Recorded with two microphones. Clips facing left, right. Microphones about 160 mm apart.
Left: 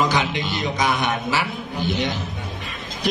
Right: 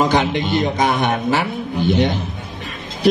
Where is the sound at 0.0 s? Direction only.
55° right (ahead or behind).